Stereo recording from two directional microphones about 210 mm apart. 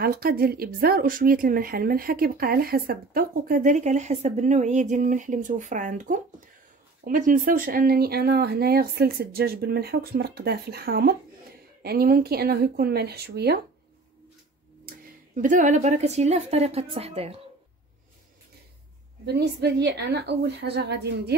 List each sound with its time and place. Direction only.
0.0 s speech: 45° right (ahead or behind)
14.9 s speech: 40° right (ahead or behind)
19.2 s speech: 50° right (ahead or behind)